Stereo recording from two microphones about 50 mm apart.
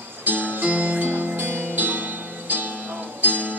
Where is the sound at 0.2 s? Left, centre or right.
Right.